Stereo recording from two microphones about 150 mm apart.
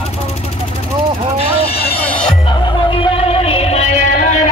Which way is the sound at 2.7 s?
30° left (ahead or behind).